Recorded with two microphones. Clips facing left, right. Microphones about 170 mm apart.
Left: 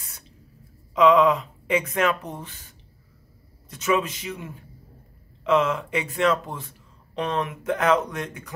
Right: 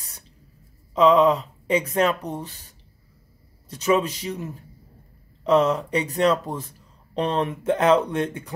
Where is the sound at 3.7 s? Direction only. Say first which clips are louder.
Right 3 dB; 35° right (ahead or behind).